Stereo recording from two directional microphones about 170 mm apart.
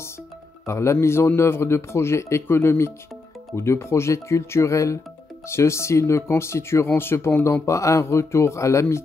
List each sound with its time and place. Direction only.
0.7 s speech: 15° left (ahead or behind)